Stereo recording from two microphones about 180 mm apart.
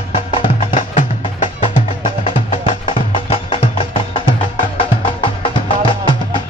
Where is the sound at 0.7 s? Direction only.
45° left (ahead or behind); by 5.6 s 30° left (ahead or behind).